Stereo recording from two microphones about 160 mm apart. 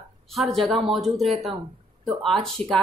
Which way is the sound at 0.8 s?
Centre (ahead or behind).